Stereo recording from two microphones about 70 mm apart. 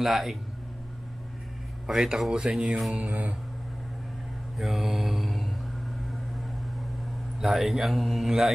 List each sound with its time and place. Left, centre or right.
0.0 s speech: centre
1.9 s speech: centre
2.9 s mantra: right
4.6 s mantra: centre
7.3 s speech: centre